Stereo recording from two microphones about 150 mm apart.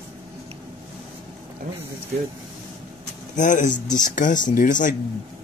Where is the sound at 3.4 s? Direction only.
60° left (ahead or behind).